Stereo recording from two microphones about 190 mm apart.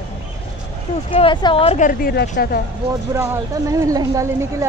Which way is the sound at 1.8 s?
50° left (ahead or behind).